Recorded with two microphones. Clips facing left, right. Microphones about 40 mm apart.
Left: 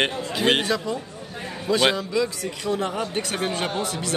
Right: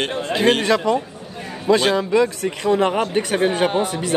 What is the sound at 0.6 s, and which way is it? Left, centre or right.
Speech, right.